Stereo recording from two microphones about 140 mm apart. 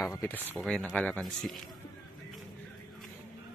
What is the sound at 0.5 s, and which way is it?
Speech, 5° left (ahead or behind).